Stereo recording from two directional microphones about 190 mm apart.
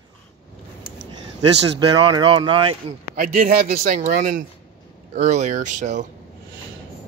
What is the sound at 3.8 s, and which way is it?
Speech, 35° right (ahead or behind).